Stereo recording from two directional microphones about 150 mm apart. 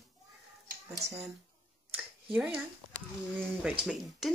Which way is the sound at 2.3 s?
5° right (ahead or behind).